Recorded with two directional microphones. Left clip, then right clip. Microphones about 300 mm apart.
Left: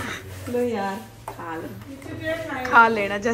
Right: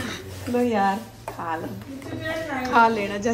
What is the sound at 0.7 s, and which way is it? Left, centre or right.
Speech, centre.